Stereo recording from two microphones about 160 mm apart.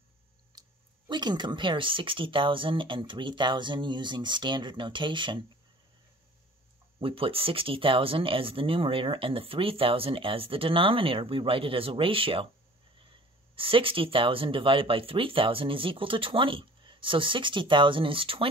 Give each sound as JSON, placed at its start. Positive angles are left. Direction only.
{"t": 0.6, "sound": "speech", "side_deg": -30}
{"t": 7.0, "sound": "speech", "side_deg": -35}
{"t": 13.6, "sound": "speech", "side_deg": -35}